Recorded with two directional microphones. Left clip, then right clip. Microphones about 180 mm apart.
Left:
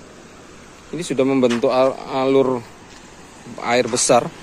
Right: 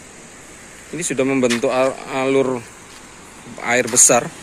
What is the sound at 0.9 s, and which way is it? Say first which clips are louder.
Speech: left 1 dB; 10° left (ahead or behind).